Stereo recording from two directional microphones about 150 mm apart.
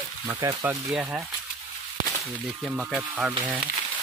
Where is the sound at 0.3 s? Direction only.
20° right (ahead or behind).